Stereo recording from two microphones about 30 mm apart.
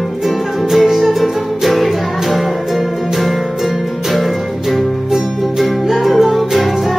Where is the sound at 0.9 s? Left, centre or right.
Centre.